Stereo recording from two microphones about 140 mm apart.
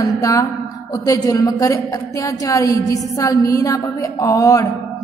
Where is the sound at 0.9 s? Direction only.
25° left (ahead or behind).